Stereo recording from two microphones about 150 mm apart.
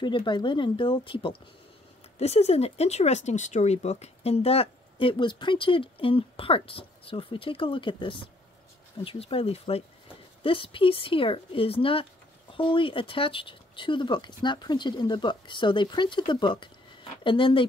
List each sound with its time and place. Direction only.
0.0 s speech: 30° left (ahead or behind)
2.1 s speech: 45° left (ahead or behind)